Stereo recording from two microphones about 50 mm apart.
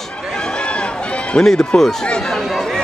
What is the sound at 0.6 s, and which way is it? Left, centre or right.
Run, left.